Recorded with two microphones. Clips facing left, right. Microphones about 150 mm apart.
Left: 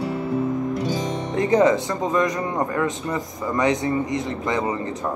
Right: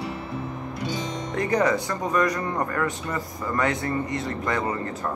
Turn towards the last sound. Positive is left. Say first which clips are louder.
# left 3 dB
turn(degrees=20)  # may be behind; listen again after turning